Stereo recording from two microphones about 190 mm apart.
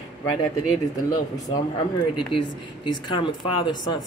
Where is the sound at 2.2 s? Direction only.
25° left (ahead or behind).